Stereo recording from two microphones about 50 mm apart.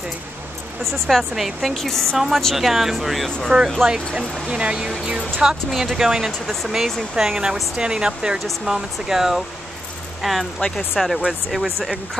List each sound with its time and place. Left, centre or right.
0.9 s a woman's voice: centre
2.1 s a woman's voice: centre
4.5 s speech: centre
9.0 s a woman's voice: centre
11.0 s a woman's voice: centre